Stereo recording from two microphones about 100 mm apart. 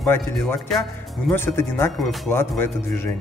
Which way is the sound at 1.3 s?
25° left (ahead or behind).